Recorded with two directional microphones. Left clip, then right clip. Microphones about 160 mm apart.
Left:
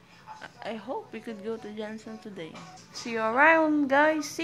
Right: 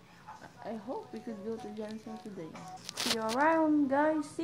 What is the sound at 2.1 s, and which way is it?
Speech, 20° left (ahead or behind).